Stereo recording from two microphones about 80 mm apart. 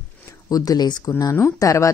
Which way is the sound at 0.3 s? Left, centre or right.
Left.